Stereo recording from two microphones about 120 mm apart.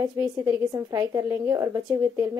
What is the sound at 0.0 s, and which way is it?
A woman's voice, 30° right (ahead or behind).